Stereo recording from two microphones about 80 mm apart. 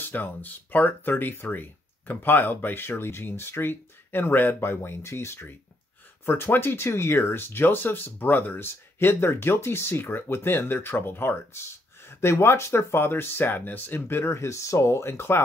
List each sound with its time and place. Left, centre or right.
0.0 s speech: left